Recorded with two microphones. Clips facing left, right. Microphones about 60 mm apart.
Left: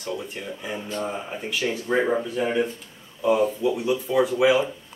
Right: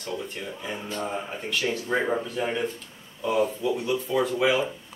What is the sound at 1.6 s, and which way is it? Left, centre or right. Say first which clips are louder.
Speech: left 3 dB; centre.